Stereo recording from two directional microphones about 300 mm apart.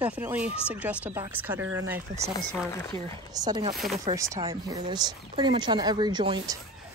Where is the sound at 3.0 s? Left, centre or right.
Centre.